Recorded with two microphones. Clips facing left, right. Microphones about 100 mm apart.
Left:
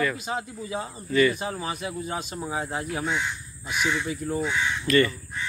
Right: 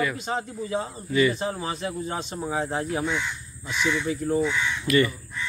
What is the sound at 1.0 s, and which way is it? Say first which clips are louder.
Speech: left 1 dB; 15° right (ahead or behind).